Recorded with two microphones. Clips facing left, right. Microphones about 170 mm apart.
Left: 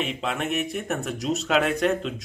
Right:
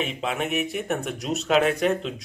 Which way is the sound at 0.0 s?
Centre (ahead or behind).